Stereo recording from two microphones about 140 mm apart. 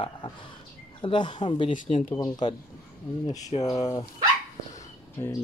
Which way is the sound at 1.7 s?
60° left (ahead or behind).